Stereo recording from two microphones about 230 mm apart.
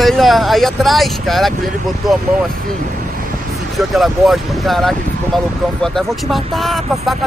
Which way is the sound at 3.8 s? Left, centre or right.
Centre.